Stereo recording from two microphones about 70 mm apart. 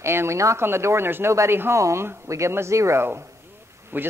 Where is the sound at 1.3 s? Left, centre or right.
Right.